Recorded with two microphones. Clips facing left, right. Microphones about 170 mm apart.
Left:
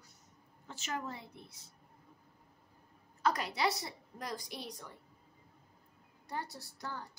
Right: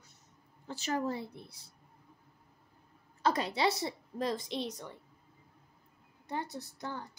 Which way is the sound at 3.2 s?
25° right (ahead or behind).